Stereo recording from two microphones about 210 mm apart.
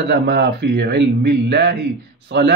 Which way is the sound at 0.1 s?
50° right (ahead or behind).